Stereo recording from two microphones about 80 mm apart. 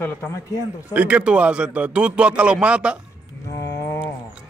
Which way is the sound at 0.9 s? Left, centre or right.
Centre.